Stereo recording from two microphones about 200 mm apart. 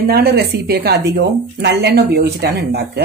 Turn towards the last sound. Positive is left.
turn(degrees=-55)  # may be behind; listen again after turning